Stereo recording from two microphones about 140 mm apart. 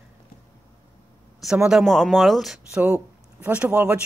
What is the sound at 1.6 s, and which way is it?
Speech, centre (ahead or behind).